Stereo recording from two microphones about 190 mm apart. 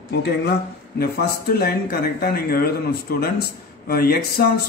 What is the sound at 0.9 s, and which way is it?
Speech, 55° left (ahead or behind).